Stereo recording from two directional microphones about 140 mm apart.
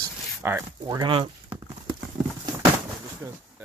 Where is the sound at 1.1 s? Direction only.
40° right (ahead or behind).